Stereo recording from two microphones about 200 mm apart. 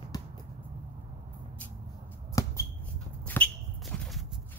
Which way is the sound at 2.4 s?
15° left (ahead or behind).